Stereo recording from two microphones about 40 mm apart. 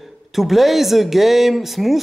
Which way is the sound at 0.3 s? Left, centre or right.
Centre.